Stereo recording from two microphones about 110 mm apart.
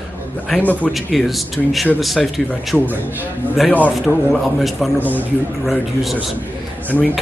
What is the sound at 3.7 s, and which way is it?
Speech, 15° left (ahead or behind).